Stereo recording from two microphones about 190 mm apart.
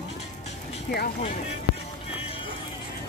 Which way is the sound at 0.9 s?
55° left (ahead or behind).